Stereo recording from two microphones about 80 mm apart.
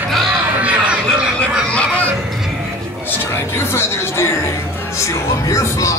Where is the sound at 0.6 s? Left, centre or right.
Centre.